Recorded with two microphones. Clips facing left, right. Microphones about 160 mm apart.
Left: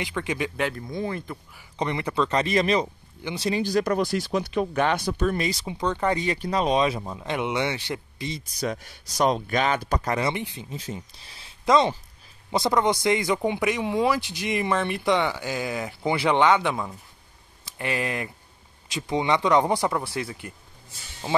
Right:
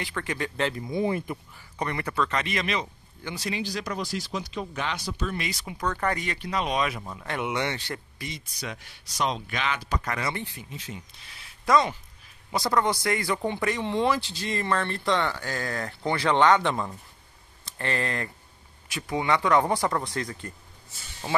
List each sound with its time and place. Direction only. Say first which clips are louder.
0.0 s a man's voice: left 3 dB; 15° left (ahead or behind)
0.7 s speech: right 3 dB; 10° right (ahead or behind)
1.8 s speech: left 3 dB; 20° left (ahead or behind)
3.5 s speech: left 10 dB; 50° left (ahead or behind)
5.5 s speech: left 4 dB; 25° left (ahead or behind)
6.2 s speech: left 5 dB; 35° left (ahead or behind); by 8.3 s 20° left (ahead or behind)
8.3 s speech: left 8 dB; 40° left (ahead or behind)
10.0 s speech: left 5 dB; 30° left (ahead or behind)
10.3 s speech: left 4 dB; 20° left (ahead or behind)
10.7 s a man's voice: left 5 dB; 35° left (ahead or behind); by 20.5 s 10° left (ahead or behind)